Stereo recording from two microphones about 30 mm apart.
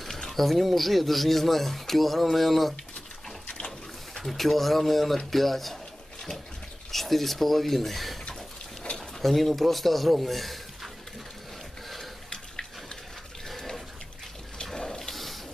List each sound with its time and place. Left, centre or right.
0.3 s speech: centre
4.2 s speech: centre
6.9 s speech: centre
9.2 s speech: centre
14.6 s a sound: left
15.0 s a sound: centre